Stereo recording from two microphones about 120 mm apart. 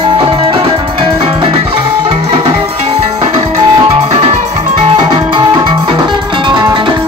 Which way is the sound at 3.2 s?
45° right (ahead or behind).